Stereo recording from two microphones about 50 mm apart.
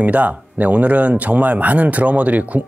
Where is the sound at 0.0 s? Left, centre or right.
Right.